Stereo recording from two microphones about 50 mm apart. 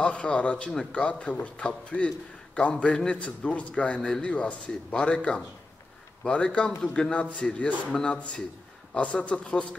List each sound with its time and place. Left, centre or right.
0.0 s a man's voice: left
7.9 s speech: centre
8.9 s a man's voice: left